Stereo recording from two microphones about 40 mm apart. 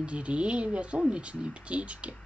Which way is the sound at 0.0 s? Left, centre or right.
Right.